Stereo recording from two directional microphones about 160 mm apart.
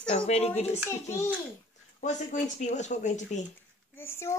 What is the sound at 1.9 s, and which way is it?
Music, 50° left (ahead or behind).